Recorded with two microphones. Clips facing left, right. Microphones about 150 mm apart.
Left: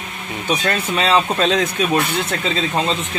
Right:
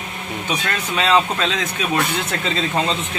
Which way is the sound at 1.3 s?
40° left (ahead or behind).